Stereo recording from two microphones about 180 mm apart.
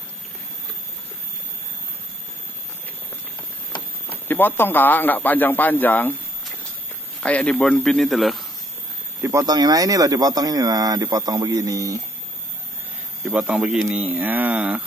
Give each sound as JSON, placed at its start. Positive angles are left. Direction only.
{"t": 4.3, "sound": "a man's voice", "side_deg": 10}
{"t": 9.2, "sound": "speech", "side_deg": -20}
{"t": 13.2, "sound": "speech", "side_deg": -5}